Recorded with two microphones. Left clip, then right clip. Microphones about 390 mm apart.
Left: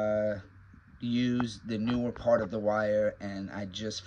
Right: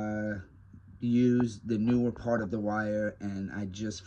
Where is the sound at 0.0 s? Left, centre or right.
Centre.